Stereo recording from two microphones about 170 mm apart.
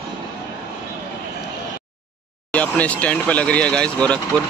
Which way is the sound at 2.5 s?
10° left (ahead or behind).